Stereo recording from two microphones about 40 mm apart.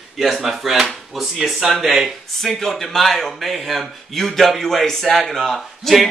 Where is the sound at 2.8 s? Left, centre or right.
Centre.